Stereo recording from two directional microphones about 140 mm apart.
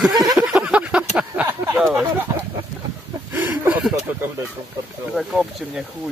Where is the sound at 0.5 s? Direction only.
10° right (ahead or behind).